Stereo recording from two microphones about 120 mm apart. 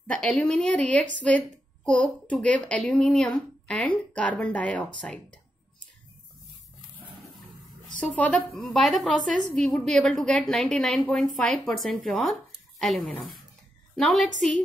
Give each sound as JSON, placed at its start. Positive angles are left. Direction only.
{"t": 0.0, "sound": "a child's voice", "side_deg": 5}
{"t": 8.0, "sound": "a woman's voice", "side_deg": 10}